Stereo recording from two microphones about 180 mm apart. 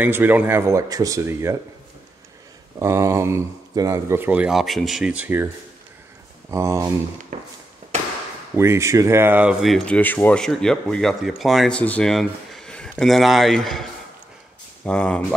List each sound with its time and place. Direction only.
0.0 s speech: 10° right (ahead or behind)
2.8 s speech: 15° right (ahead or behind)
6.5 s speech: 15° right (ahead or behind)
7.3 s a sound: 45° right (ahead or behind)
8.5 s speech: 15° right (ahead or behind); by 13.8 s centre (ahead or behind)
14.9 s speech: 5° left (ahead or behind)